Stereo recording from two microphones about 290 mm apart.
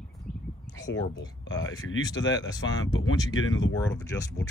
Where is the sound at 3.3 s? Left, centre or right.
Left.